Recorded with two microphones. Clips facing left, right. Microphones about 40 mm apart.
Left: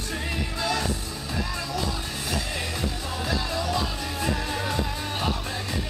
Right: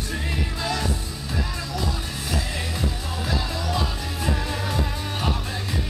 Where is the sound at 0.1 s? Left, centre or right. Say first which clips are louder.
Even; centre.